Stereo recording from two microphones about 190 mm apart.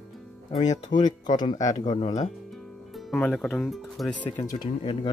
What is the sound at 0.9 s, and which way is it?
Speech, 20° left (ahead or behind).